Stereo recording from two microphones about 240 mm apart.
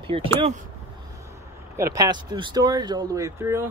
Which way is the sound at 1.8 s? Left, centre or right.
Centre.